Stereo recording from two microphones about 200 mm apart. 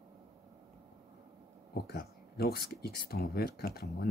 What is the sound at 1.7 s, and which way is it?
Speech, 50° left (ahead or behind).